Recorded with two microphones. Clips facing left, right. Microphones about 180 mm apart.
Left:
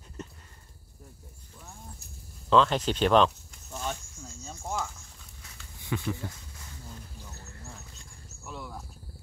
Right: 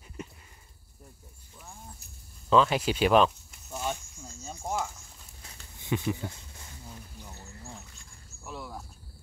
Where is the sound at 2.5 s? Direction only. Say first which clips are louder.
Even; 10° right (ahead or behind).